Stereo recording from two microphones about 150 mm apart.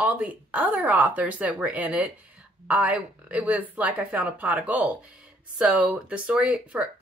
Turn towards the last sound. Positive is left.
turn(degrees=-10)  # may be behind; listen again after turning